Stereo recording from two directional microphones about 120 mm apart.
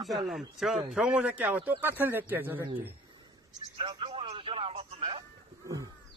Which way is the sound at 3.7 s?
45° right (ahead or behind).